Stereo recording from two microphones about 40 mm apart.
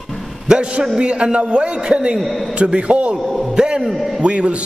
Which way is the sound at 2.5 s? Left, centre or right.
Right.